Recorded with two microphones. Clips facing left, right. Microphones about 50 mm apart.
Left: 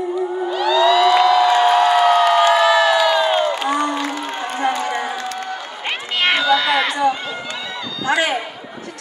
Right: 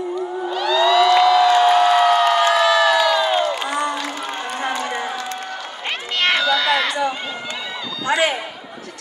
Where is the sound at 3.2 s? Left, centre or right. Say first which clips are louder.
Left 2 dB; left.